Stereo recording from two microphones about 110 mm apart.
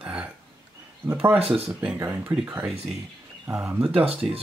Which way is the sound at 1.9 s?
25° right (ahead or behind).